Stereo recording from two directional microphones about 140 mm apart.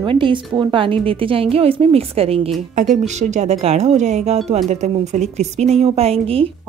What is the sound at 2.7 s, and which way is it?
A woman's voice, 60° right (ahead or behind).